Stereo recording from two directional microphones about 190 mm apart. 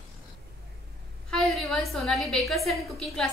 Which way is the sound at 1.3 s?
5° left (ahead or behind).